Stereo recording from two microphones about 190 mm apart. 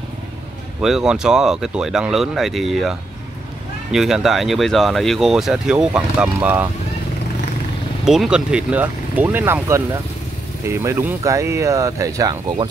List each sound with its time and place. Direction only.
0.7 s speech: 5° right (ahead or behind)
8.0 s speech: 5° right (ahead or behind); by 12.6 s 20° right (ahead or behind)